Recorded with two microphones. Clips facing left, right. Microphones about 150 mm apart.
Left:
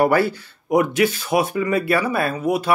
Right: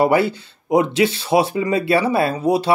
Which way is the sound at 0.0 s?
20° right (ahead or behind).